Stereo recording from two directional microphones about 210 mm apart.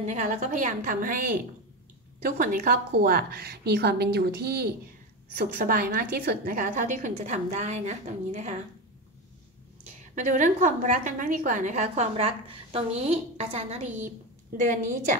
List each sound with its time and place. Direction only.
0.0 s a woman's voice: 35° right (ahead or behind)
2.2 s a woman's voice: 45° right (ahead or behind)
10.1 s a woman's voice: 35° right (ahead or behind)
13.8 s a woman's voice: 10° right (ahead or behind)
14.6 s a woman's voice: 35° right (ahead or behind)